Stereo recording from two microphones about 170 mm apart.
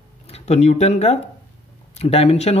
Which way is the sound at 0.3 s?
40° left (ahead or behind).